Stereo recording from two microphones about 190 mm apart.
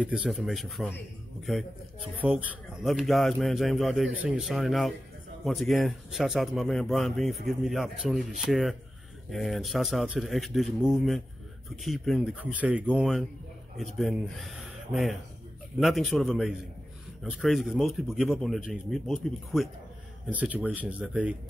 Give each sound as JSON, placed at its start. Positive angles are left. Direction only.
{"t": 0.0, "sound": "a man's voice", "side_deg": -5}